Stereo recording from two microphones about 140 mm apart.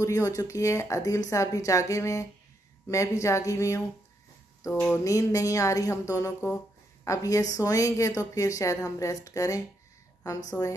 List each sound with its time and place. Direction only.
0.0 s a woman's voice: 20° left (ahead or behind)
4.9 s a woman's voice: 25° left (ahead or behind)